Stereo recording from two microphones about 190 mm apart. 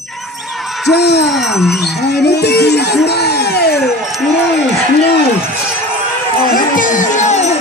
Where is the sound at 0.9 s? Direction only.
60° left (ahead or behind).